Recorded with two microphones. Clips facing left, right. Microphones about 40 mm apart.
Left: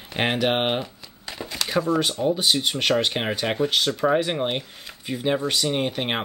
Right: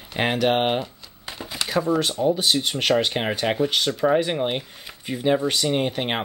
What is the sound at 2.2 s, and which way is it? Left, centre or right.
Speech, centre.